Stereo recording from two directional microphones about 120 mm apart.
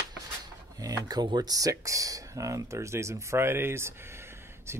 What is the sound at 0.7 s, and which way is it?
Speech, 30° right (ahead or behind).